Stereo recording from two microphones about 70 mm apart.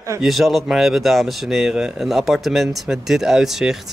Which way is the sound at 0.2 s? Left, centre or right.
Centre.